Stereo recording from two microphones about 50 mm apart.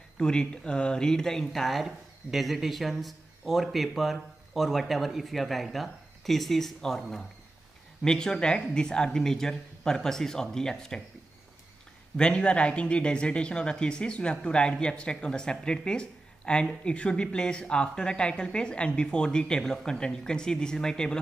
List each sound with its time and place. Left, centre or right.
0.2 s a woman's voice: centre
12.2 s a man's voice: centre